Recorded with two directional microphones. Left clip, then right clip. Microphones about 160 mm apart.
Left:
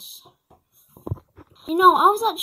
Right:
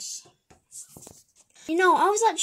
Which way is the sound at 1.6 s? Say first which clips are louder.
Left 6 dB; 10° left (ahead or behind).